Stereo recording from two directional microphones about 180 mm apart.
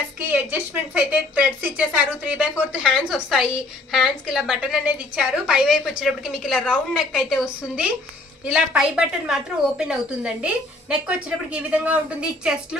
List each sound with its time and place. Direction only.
0.3 s a woman's voice: 10° right (ahead or behind)